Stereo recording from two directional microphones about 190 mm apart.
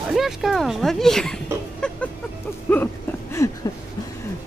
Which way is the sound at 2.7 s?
10° left (ahead or behind).